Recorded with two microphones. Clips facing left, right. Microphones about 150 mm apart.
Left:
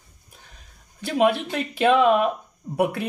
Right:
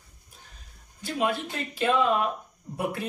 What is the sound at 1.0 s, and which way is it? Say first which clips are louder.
A man's voice: left 7 dB; 70° left (ahead or behind).